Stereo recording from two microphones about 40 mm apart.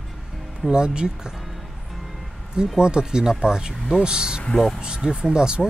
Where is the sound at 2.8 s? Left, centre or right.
Right.